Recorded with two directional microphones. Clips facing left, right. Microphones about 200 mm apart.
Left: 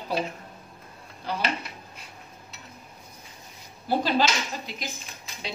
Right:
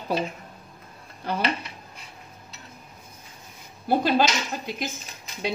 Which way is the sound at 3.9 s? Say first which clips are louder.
Right 3 dB; 55° right (ahead or behind).